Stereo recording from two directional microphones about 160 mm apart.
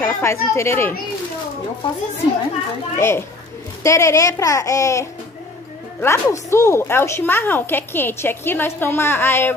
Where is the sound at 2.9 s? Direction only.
15° left (ahead or behind).